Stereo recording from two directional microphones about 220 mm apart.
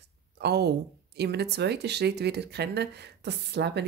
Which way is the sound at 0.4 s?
50° right (ahead or behind).